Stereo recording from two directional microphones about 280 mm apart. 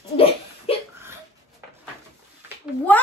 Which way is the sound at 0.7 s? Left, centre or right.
Centre.